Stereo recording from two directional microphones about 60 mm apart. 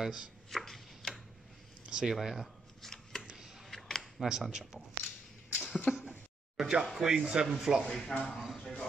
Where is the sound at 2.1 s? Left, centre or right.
Centre.